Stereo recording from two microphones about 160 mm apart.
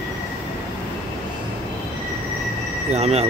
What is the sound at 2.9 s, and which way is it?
Speech, 40° right (ahead or behind).